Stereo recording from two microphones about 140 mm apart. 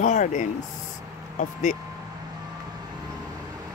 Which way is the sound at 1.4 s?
65° left (ahead or behind).